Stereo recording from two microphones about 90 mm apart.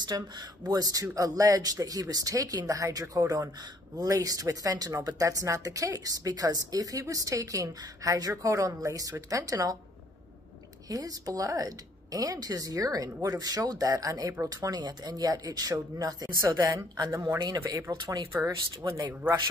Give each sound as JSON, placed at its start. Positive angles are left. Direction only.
{"t": 0.1, "sound": "speech", "side_deg": -45}
{"t": 10.9, "sound": "speech", "side_deg": -45}
{"t": 18.0, "sound": "speech", "side_deg": -60}